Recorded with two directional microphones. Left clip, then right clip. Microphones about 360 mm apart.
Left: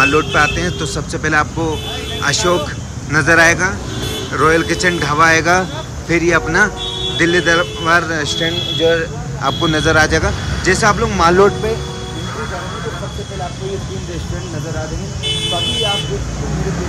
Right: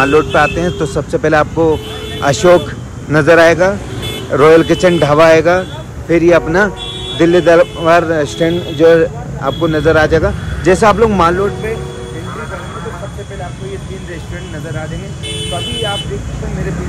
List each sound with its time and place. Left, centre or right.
0.0 s speech: centre
8.4 s speech: right
8.9 s speech: centre